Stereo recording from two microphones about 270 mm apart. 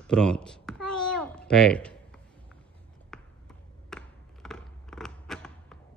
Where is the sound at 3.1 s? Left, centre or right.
Centre.